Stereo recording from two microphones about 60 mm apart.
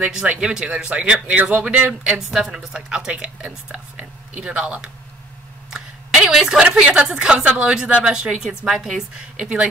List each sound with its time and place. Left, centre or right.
0.0 s speech: centre
1.9 s speech: centre
5.7 s a sound: centre
6.7 s speech: centre